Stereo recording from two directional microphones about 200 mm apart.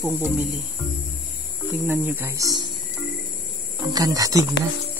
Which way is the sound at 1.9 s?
10° right (ahead or behind).